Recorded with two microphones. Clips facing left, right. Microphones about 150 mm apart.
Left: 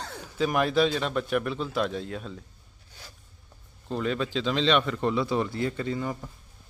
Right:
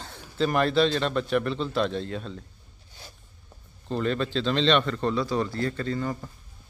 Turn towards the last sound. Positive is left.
turn(degrees=10)  # may be behind; listen again after turning